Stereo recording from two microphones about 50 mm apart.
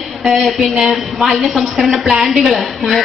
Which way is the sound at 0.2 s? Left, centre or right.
Centre.